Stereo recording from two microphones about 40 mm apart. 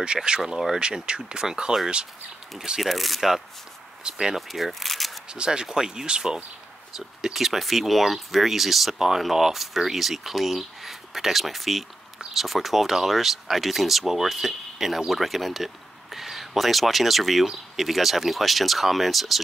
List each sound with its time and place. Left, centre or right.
0.0 s speech: right
2.8 s speech: centre
4.0 s speech: centre
4.4 s speech: centre
5.3 s speech: right; by 19.4 s centre